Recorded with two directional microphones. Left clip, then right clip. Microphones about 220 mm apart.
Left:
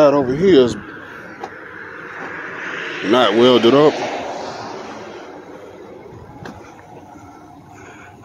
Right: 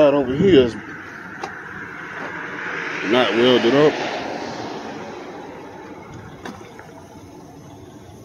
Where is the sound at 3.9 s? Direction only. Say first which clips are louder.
Left 2 dB; 50° left (ahead or behind).